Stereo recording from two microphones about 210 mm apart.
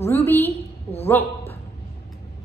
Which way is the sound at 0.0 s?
10° left (ahead or behind).